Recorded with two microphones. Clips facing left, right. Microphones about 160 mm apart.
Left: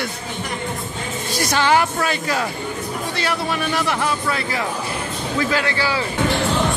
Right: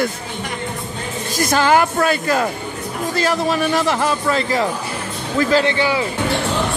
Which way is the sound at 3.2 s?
40° right (ahead or behind).